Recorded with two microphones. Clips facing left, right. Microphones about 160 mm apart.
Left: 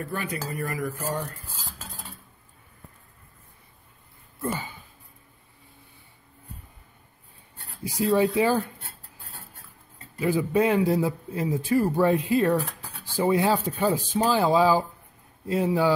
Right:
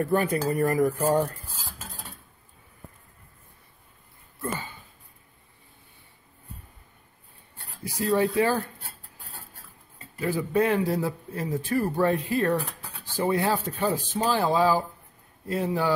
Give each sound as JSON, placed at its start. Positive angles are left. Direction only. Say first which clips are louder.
{"t": 0.0, "sound": "speech", "louder": "right 8 dB", "side_deg": -40}
{"t": 4.5, "sound": "a sound", "louder": "left 2 dB", "side_deg": 15}
{"t": 7.8, "sound": "a man's voice", "louder": "left 2 dB", "side_deg": 15}
{"t": 10.2, "sound": "a man's voice", "louder": "left 2 dB", "side_deg": 15}